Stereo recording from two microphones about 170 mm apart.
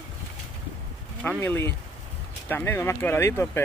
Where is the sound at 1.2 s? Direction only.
10° left (ahead or behind).